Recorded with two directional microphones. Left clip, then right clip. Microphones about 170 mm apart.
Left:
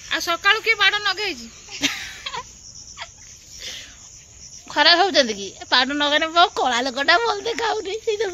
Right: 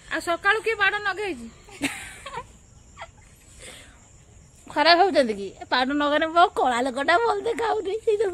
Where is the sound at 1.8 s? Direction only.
Centre (ahead or behind).